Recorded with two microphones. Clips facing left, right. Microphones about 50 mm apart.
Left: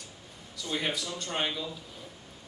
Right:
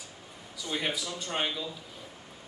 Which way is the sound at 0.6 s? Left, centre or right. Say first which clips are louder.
Even; centre.